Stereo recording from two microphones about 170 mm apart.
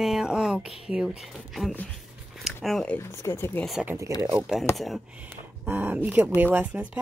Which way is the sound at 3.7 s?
5° right (ahead or behind).